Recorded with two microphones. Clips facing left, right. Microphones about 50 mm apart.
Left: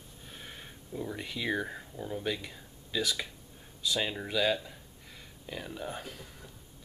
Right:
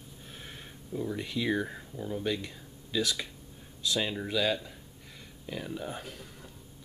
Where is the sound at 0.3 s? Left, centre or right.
Centre.